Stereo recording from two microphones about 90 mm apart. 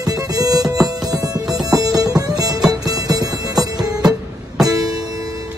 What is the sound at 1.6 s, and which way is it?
Music, 45° right (ahead or behind).